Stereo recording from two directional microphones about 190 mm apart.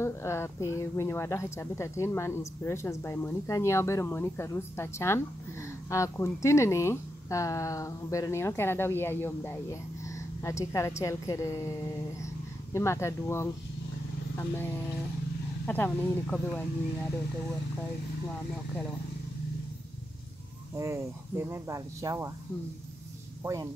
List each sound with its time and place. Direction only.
0.0 s speech: 15° left (ahead or behind)
12.7 s speech: 15° left (ahead or behind)
20.7 s speech: 15° right (ahead or behind)
23.4 s speech: 15° right (ahead or behind)